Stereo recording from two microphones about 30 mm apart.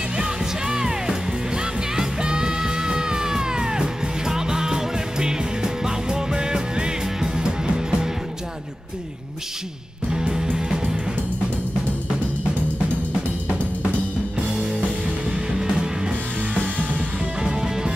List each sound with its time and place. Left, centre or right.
0.2 s music: centre
10.1 s music: right
14.4 s music: centre
17.4 s music: right